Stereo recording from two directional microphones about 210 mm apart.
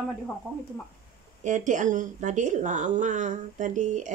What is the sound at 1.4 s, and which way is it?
Speech, 35° right (ahead or behind).